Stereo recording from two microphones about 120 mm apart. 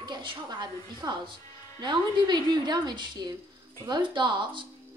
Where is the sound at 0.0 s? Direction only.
40° right (ahead or behind).